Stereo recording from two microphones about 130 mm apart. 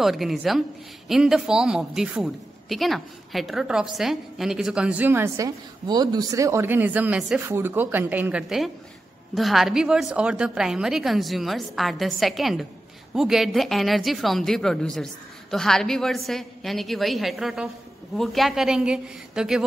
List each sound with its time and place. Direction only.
0.0 s a woman's voice: centre (ahead or behind); by 5.5 s 20° right (ahead or behind)
5.9 s a woman's voice: 30° right (ahead or behind); by 19.6 s 5° right (ahead or behind)